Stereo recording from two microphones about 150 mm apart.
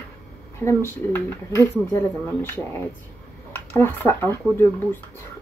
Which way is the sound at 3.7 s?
15° left (ahead or behind).